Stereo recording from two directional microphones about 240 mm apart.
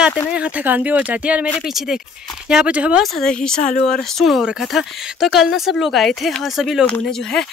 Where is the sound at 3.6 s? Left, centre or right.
Left.